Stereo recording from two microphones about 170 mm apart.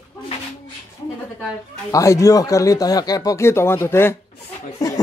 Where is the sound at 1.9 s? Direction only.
20° left (ahead or behind).